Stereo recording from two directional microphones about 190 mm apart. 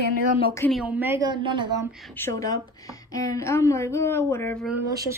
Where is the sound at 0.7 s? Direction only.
5° right (ahead or behind); by 1.8 s 25° right (ahead or behind).